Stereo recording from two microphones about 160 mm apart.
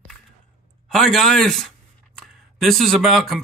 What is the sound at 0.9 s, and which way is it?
Speech, centre (ahead or behind).